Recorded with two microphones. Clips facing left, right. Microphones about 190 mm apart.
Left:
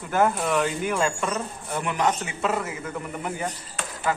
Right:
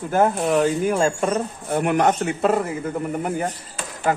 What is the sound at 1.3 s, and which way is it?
Speech, 55° right (ahead or behind).